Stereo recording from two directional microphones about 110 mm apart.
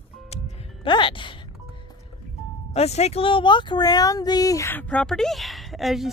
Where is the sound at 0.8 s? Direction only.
45° left (ahead or behind).